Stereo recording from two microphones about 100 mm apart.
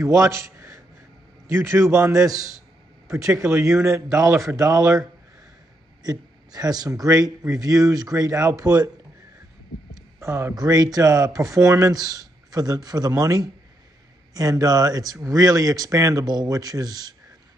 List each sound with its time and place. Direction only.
0.0 s a man's voice: 30° right (ahead or behind)
6.0 s speech: 40° right (ahead or behind)
10.2 s speech: 30° right (ahead or behind)